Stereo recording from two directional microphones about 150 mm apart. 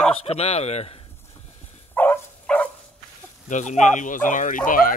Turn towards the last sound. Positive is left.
turn(degrees=65)  # may be behind; listen again after turning